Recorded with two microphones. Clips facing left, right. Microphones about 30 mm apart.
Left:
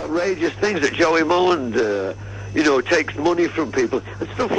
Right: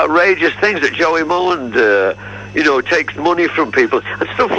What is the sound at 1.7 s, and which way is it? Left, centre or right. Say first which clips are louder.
Speech: right 9 dB; right.